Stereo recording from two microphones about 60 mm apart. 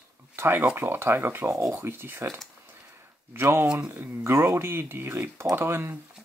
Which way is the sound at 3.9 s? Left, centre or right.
Right.